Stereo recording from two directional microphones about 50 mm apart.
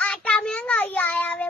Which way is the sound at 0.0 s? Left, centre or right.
Left.